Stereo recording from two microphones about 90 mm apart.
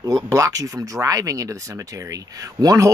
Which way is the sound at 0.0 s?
40° right (ahead or behind).